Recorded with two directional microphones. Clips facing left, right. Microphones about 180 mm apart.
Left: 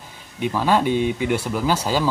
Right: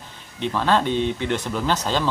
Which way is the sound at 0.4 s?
10° left (ahead or behind).